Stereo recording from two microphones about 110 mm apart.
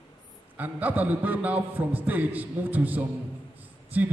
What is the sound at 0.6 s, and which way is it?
A man's voice, 15° right (ahead or behind).